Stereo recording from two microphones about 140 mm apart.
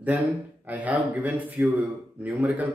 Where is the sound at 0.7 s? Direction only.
10° right (ahead or behind).